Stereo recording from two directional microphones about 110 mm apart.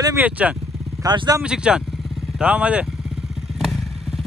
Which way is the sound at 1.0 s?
40° right (ahead or behind).